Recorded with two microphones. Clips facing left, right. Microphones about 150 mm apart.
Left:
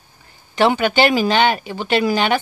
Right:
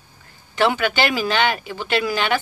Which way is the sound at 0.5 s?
25° left (ahead or behind).